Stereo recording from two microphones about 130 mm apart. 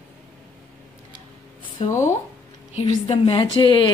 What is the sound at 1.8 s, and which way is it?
A woman's voice, 50° left (ahead or behind).